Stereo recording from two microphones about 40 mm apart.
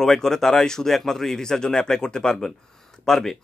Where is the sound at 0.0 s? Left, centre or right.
Centre.